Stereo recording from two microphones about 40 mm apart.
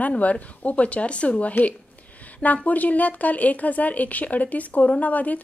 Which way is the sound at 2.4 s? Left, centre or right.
Left.